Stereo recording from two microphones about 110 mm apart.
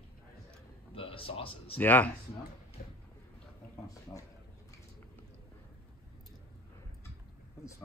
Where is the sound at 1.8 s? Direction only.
15° left (ahead or behind).